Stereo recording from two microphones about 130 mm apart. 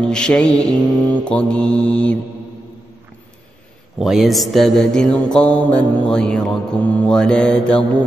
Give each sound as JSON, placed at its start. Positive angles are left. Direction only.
{"t": 0.0, "sound": "mantra", "side_deg": 5}
{"t": 4.0, "sound": "mantra", "side_deg": 0}